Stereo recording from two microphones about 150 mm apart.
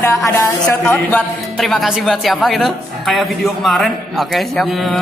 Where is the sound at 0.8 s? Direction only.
5° left (ahead or behind).